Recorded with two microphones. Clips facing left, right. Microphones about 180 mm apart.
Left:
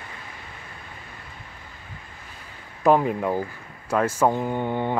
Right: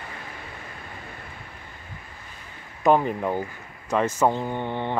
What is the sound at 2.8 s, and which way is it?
Speech, 5° left (ahead or behind).